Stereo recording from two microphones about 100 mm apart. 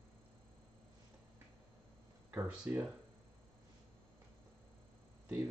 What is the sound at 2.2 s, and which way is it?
Speech, 15° right (ahead or behind).